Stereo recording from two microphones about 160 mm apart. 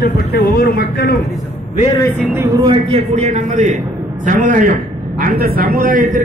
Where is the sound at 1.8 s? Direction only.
20° left (ahead or behind).